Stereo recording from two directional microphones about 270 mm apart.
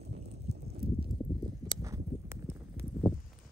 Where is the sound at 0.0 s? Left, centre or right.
Right.